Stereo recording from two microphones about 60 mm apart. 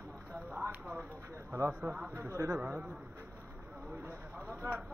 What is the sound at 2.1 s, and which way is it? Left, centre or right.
Speech, right.